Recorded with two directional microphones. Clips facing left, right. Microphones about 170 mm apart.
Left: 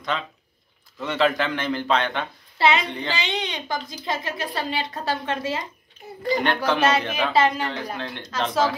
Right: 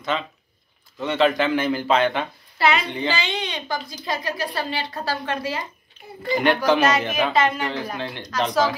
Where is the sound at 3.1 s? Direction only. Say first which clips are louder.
Right 1 dB; 20° left (ahead or behind).